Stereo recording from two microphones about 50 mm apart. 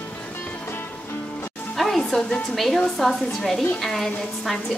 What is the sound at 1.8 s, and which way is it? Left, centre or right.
Music, centre.